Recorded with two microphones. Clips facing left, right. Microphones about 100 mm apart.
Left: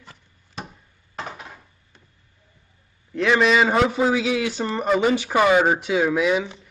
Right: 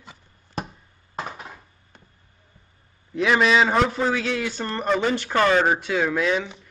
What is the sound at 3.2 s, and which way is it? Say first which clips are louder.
A man's voice: left 1 dB; centre (ahead or behind).